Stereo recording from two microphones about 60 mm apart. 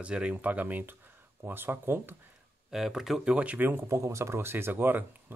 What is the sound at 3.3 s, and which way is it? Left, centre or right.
Speech, right.